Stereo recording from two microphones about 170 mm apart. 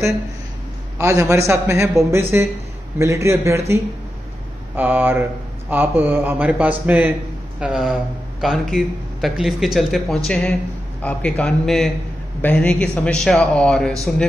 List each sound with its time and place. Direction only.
0.9 s a man's voice: 20° right (ahead or behind); by 13.9 s 5° left (ahead or behind)